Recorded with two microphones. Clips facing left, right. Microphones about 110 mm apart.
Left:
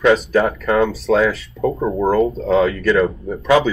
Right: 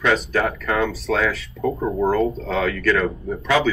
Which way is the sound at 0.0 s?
20° left (ahead or behind).